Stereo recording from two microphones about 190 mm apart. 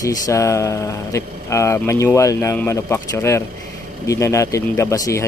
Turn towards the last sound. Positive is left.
turn(degrees=15)  # may be behind; listen again after turning